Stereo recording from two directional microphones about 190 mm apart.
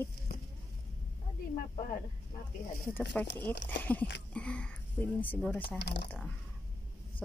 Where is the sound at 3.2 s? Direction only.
10° left (ahead or behind).